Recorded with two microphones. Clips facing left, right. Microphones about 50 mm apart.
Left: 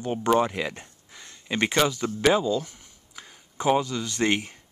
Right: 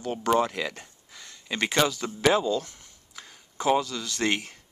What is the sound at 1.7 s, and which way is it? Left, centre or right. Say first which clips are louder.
Speech: right 1 dB; centre.